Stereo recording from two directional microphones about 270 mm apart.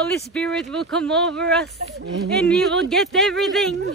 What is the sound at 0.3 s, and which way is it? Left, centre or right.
Speech, centre.